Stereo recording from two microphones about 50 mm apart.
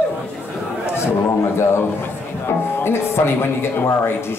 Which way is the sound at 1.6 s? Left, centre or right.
Left.